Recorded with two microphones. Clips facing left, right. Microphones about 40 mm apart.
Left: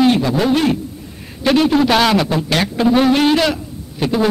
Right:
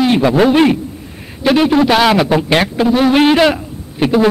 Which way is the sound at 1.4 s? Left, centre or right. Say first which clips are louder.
Right 2 dB; centre.